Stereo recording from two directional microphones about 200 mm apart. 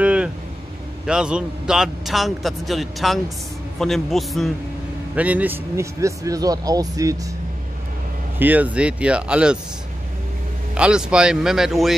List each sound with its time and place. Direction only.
0.0 s vehicle: 5° right (ahead or behind)
1.0 s a man's voice: 5° right (ahead or behind)
8.4 s a man's voice: 10° right (ahead or behind)
10.7 s a man's voice: 5° right (ahead or behind)